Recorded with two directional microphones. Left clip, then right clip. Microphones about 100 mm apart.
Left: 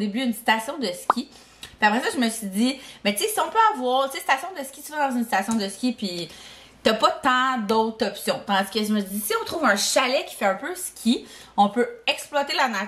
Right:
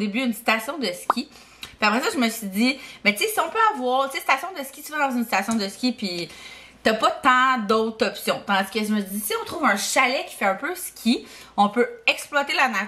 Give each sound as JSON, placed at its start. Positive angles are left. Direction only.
{"t": 0.1, "sound": "speech", "side_deg": -10}
{"t": 1.1, "sound": "speech", "side_deg": 75}
{"t": 1.8, "sound": "speech", "side_deg": -10}
{"t": 2.5, "sound": "speech", "side_deg": 0}
{"t": 4.3, "sound": "speech", "side_deg": 0}
{"t": 6.8, "sound": "a woman's voice", "side_deg": 10}
{"t": 7.2, "sound": "speech", "side_deg": 0}
{"t": 7.6, "sound": "speech", "side_deg": -10}
{"t": 10.6, "sound": "speech", "side_deg": 0}
{"t": 12.4, "sound": "speech", "side_deg": 5}